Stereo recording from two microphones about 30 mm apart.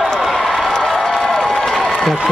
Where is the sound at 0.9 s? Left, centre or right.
Centre.